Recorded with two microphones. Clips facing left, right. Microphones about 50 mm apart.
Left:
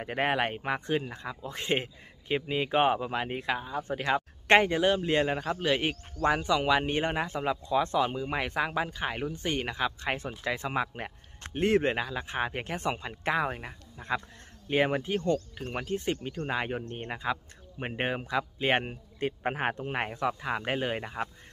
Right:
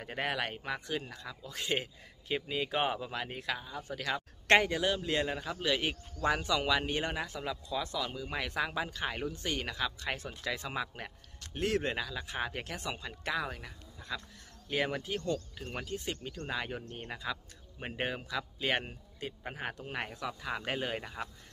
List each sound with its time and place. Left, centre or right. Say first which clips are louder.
0.0 s speech: left 7 dB; left
19.7 s speech: left 7 dB; left